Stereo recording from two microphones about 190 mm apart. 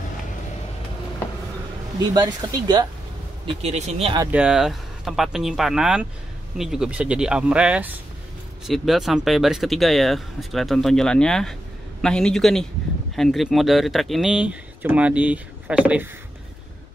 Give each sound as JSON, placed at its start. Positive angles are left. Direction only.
{"t": 2.1, "sound": "speech", "side_deg": -20}
{"t": 3.4, "sound": "speech", "side_deg": -35}
{"t": 4.3, "sound": "speech", "side_deg": -5}